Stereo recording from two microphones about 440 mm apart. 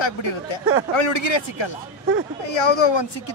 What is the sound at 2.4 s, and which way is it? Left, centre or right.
Speech, left.